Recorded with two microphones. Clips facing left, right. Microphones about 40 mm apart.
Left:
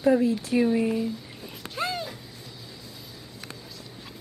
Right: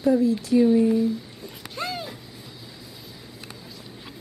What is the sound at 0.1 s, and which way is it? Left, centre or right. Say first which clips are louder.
Speech: right 5 dB; left.